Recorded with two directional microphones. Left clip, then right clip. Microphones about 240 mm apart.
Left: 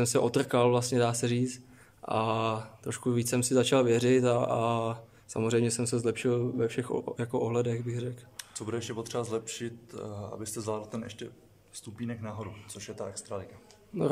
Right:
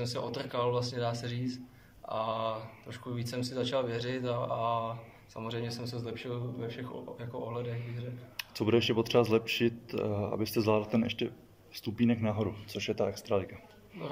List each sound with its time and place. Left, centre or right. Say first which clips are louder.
0.0 s speech: left 9 dB; left
8.4 s speech: right 9 dB; centre